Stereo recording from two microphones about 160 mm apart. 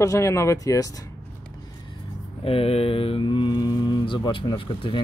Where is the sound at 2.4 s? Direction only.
35° left (ahead or behind).